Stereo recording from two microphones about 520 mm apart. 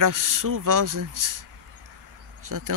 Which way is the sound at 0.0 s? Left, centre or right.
Right.